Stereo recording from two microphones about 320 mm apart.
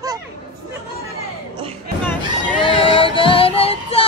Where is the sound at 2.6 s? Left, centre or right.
Centre.